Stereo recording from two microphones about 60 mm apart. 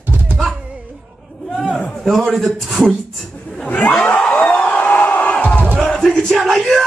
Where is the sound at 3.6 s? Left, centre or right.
Left.